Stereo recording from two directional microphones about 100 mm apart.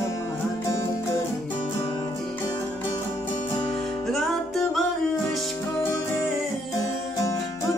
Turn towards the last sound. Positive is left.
turn(degrees=30)  # may be behind; listen again after turning